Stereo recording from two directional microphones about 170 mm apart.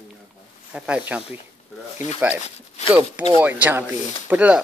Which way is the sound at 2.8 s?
45° left (ahead or behind).